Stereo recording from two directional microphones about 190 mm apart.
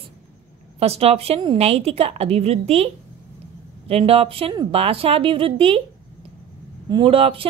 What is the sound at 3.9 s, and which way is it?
A woman's voice, 30° right (ahead or behind).